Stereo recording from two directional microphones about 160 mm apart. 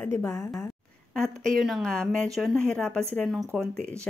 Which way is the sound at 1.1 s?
Centre (ahead or behind).